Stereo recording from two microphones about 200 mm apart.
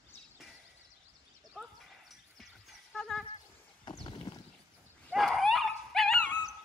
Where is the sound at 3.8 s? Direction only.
25° left (ahead or behind).